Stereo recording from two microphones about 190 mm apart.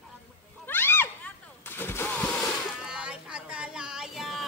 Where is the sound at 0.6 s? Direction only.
10° left (ahead or behind).